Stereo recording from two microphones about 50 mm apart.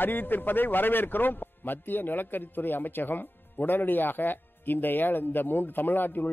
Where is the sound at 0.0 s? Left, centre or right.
Left.